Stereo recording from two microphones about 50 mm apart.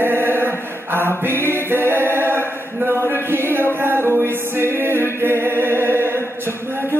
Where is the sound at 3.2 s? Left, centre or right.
Right.